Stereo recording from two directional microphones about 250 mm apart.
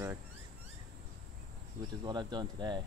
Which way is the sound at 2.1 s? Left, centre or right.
Centre.